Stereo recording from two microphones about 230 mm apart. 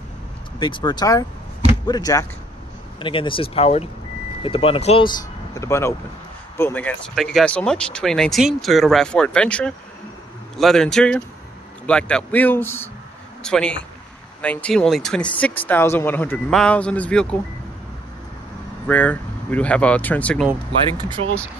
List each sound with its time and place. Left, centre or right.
0.6 s a man's voice: left; by 17.4 s centre
18.9 s speech: centre
21.0 s speech: right